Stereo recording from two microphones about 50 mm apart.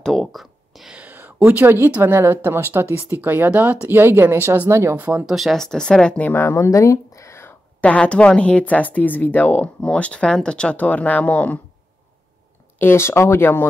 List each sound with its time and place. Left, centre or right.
0.2 s a sound: centre
1.1 s a sound: right
1.6 s speech: right
4.0 s speech: right
4.6 s speech: right
4.9 s speech: right
5.2 s speech: centre
5.6 s speech: centre
6.2 s speech: left
6.5 s a sound: left
7.8 s speech: left
9.8 s speech: left
12.7 s speech: left
13.4 s speech: left